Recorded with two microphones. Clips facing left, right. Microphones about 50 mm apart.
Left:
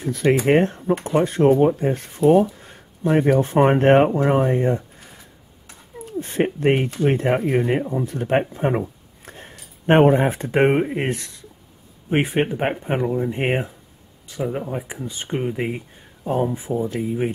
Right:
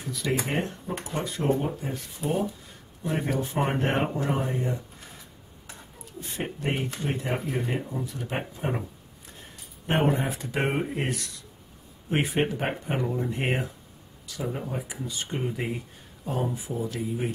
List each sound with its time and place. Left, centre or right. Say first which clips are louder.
0.0 s speech: left 11 dB; left
6.0 s speech: left 12 dB; left